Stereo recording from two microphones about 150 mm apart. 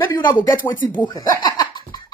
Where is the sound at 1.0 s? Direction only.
25° left (ahead or behind).